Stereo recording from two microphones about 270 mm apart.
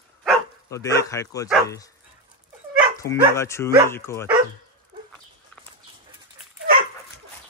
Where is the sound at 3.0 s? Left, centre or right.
Centre.